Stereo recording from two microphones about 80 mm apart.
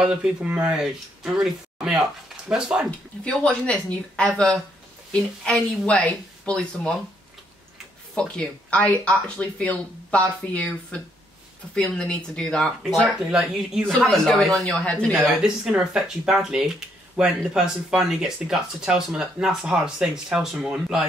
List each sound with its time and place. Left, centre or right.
0.0 s speech: centre
3.3 s speech: centre
8.1 s speech: centre
13.3 s speech: centre
14.9 s speech: centre
15.7 s speech: centre